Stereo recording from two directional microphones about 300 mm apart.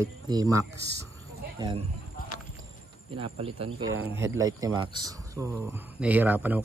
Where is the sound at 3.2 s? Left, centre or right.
Centre.